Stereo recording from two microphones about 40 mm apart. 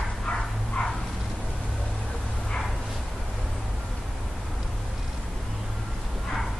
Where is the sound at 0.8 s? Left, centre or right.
Left.